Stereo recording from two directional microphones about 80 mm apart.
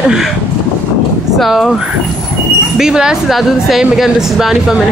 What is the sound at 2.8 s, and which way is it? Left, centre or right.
Speech, centre.